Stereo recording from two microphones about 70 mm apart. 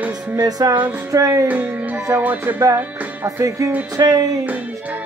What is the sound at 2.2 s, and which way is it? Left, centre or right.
Music, right.